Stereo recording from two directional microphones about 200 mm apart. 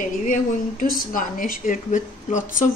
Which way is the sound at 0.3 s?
45° left (ahead or behind).